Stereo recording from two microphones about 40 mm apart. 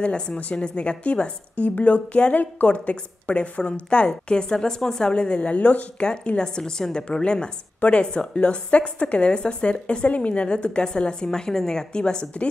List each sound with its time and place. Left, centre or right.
0.0 s a woman's voice: left
6.3 s a woman's voice: centre
11.9 s a woman's voice: left